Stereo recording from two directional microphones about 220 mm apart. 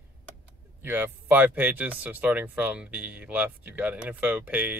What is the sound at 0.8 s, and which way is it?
Speech, 10° right (ahead or behind).